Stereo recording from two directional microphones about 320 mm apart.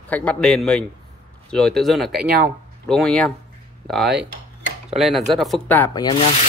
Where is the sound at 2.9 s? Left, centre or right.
Centre.